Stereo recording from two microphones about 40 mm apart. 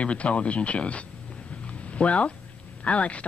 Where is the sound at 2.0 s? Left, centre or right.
Left.